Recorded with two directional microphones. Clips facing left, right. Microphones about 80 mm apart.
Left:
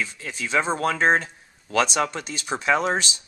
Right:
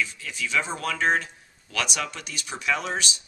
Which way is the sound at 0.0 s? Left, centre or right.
Left.